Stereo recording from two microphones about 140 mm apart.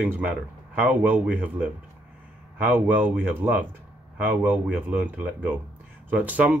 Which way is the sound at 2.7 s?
10° right (ahead or behind).